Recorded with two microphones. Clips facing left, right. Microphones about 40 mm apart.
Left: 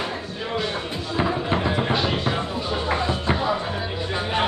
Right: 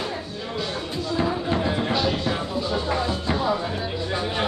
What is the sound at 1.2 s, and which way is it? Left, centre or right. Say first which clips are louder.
Music: left 2 dB; left.